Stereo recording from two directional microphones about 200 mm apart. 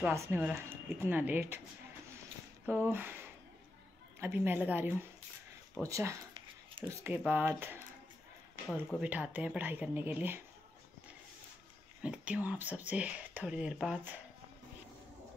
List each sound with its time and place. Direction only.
0.0 s speech: 10° right (ahead or behind)
2.6 s speech: 10° right (ahead or behind)
5.9 s a sound: 15° right (ahead or behind)
6.9 s speech: 10° right (ahead or behind)
12.0 s speech: 5° right (ahead or behind)